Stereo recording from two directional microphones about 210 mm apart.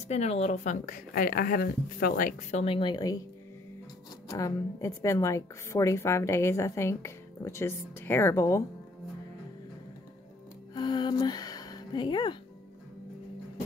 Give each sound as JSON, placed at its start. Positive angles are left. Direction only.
{"t": 0.1, "sound": "speech", "side_deg": 30}
{"t": 4.3, "sound": "a woman's voice", "side_deg": 15}
{"t": 10.7, "sound": "music", "side_deg": 20}